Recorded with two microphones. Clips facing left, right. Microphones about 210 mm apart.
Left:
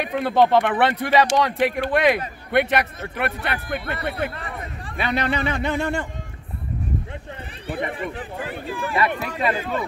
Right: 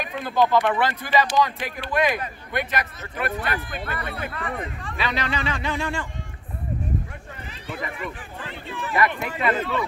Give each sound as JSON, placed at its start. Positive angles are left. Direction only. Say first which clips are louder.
{"t": 0.0, "sound": "speech", "louder": "left 4 dB", "side_deg": 65}
{"t": 4.3, "sound": "speech", "louder": "right 3 dB", "side_deg": 35}
{"t": 4.9, "sound": "speech", "louder": "left 4 dB", "side_deg": 55}
{"t": 7.7, "sound": "speech", "louder": "left 5 dB", "side_deg": 30}
{"t": 9.4, "sound": "speech", "louder": "right 1 dB", "side_deg": 45}